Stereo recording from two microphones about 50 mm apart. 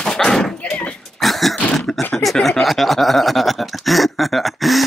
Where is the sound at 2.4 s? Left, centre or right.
Centre.